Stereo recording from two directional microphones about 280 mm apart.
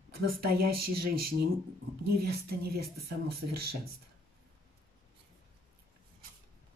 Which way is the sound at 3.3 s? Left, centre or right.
Right.